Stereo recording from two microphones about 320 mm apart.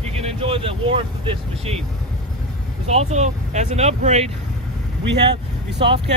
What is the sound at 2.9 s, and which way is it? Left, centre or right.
Speech, right.